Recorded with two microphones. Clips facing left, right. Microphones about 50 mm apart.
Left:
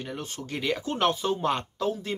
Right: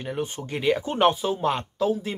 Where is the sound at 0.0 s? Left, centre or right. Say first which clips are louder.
Right 6 dB; centre.